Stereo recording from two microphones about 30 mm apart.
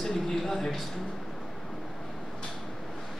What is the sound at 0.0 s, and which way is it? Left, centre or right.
Speech, centre.